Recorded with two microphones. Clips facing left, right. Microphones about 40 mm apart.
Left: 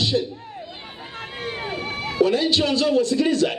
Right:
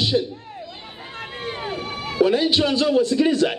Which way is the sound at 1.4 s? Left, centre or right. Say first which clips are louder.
Even; centre.